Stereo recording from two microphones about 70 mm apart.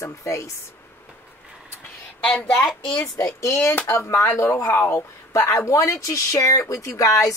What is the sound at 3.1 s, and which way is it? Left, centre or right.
Speech, left.